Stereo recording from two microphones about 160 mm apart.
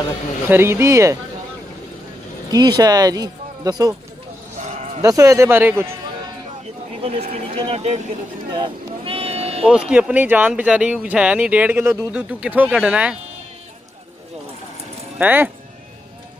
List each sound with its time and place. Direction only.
0.5 s speech: 15° right (ahead or behind)
2.5 s speech: 25° right (ahead or behind)
4.6 s sheep: 45° right (ahead or behind)
5.0 s speech: 20° right (ahead or behind)
7.0 s speech: 40° right (ahead or behind)
8.5 s sheep: 30° right (ahead or behind)
9.7 s speech: 5° right (ahead or behind)
15.1 s speech: 10° right (ahead or behind)